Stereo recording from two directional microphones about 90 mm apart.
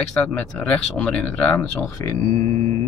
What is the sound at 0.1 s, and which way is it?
Speech, 15° left (ahead or behind).